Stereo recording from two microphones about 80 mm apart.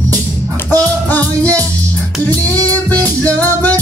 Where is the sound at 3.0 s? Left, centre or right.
Left.